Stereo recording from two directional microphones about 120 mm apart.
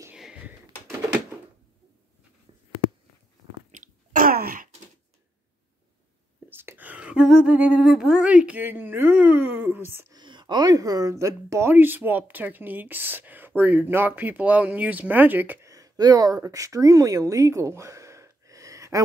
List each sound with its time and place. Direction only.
0.1 s a sound: 5° right (ahead or behind)
4.1 s wail: 90° right
6.5 s speech: 20° right (ahead or behind)
10.1 s speech: 40° right (ahead or behind); by 15.6 s 15° right (ahead or behind)
15.6 s speech: 30° right (ahead or behind)